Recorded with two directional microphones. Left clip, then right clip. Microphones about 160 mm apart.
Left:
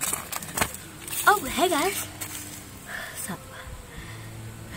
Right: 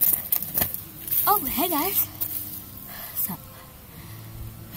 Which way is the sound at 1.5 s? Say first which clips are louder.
Left 3 dB; 10° left (ahead or behind).